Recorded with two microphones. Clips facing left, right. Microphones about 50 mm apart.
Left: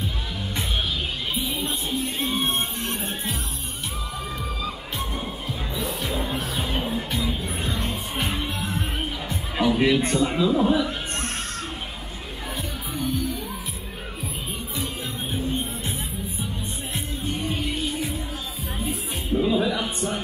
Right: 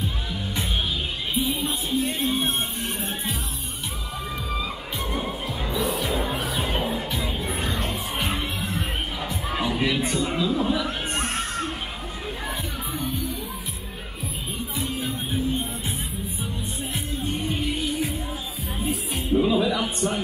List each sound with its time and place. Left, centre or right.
1.3 s music: centre
5.1 s music: centre
9.8 s a man's voice: centre
10.9 s music: centre
12.9 s music: centre
14.8 s music: centre
16.9 s music: centre
18.8 s music: centre